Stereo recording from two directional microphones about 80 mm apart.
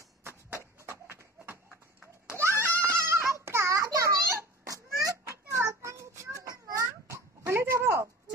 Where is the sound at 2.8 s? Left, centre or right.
Right.